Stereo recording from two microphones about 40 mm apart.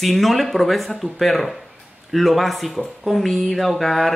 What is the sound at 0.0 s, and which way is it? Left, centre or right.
Speech, centre.